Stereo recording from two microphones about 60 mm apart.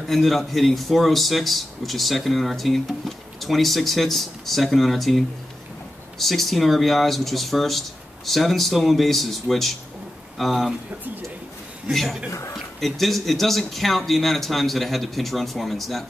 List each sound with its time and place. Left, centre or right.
0.1 s a man's voice: centre
11.9 s a man's voice: centre
12.3 s speech: left
12.5 s a man's voice: centre